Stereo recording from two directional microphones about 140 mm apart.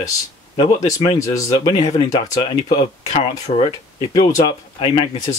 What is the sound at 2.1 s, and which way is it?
Speech, 40° left (ahead or behind).